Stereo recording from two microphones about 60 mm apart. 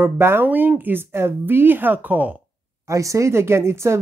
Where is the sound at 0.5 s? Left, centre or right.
Right.